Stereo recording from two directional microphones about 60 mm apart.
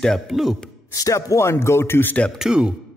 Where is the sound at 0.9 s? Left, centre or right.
Left.